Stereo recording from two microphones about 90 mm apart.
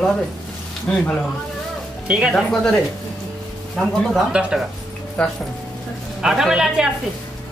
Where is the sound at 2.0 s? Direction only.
10° right (ahead or behind).